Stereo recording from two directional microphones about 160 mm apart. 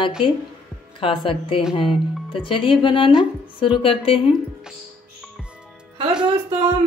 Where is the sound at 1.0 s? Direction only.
35° left (ahead or behind).